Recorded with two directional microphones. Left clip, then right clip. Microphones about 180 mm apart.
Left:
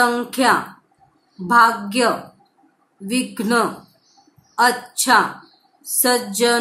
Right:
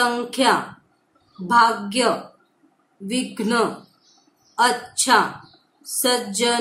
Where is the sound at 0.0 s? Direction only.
20° left (ahead or behind).